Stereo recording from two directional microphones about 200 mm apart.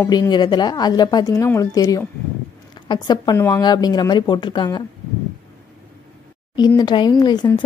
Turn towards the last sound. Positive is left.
turn(degrees=20)  # may be behind; listen again after turning